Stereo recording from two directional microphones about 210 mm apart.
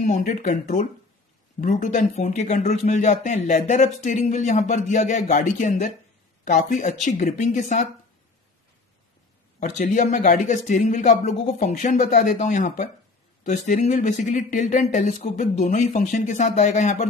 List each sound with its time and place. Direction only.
0.0 s speech: 35° left (ahead or behind)
9.6 s speech: 35° left (ahead or behind)